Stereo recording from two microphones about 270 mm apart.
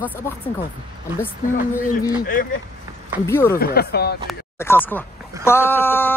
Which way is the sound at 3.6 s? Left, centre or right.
Left.